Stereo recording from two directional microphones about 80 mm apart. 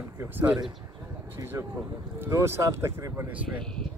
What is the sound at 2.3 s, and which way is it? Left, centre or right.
Speech, right.